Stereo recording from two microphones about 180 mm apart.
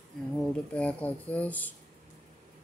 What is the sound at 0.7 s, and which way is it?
Speech, 5° left (ahead or behind).